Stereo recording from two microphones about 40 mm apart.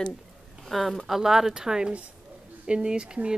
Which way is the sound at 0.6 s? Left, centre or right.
Centre.